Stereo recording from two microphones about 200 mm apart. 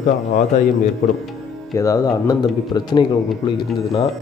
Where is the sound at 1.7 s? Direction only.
15° left (ahead or behind).